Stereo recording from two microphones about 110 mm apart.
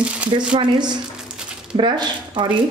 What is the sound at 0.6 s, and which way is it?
A woman's voice, 40° right (ahead or behind).